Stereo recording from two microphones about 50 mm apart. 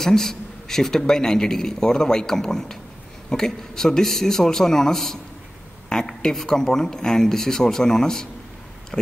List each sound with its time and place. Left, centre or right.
0.0 s a man's voice: centre